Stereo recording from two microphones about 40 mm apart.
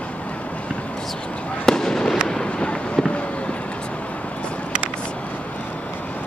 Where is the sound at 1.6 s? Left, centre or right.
Centre.